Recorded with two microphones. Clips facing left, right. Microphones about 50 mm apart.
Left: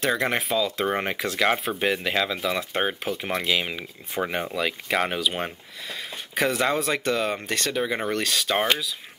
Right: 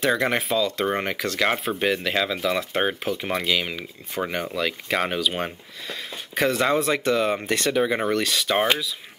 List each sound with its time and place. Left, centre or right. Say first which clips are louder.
0.0 s speech: right 2 dB; centre
7.4 s speech: right 4 dB; centre
7.8 s speech: right 3 dB; centre